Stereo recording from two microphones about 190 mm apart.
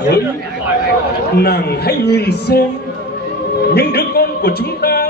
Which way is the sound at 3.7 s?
55° left (ahead or behind).